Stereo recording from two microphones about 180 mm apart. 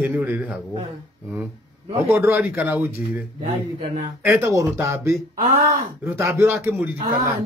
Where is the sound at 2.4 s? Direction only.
15° right (ahead or behind).